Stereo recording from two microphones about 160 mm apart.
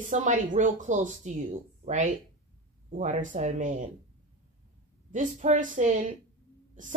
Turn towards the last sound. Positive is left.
turn(degrees=-55)  # may be behind; listen again after turning